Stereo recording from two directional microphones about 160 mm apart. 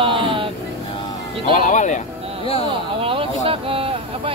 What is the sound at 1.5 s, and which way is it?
Speech, 50° left (ahead or behind).